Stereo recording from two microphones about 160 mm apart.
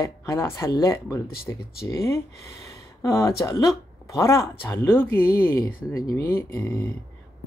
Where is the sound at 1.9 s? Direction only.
20° left (ahead or behind).